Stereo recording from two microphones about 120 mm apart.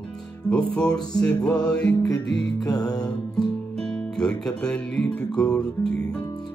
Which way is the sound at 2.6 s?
35° left (ahead or behind).